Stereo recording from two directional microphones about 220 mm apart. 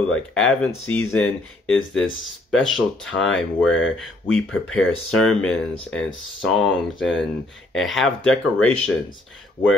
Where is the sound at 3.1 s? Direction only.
Centre (ahead or behind).